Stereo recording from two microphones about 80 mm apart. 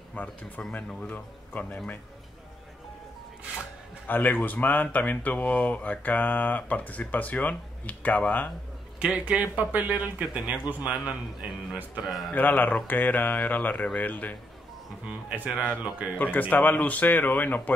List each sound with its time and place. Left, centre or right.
0.1 s speech: centre
4.1 s speech: left
9.0 s speech: centre
12.1 s a man's voice: centre
12.4 s speech: left
15.0 s speech: centre
16.2 s speech: left